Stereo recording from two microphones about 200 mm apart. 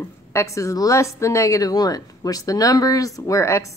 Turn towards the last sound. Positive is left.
turn(degrees=15)  # may be behind; listen again after turning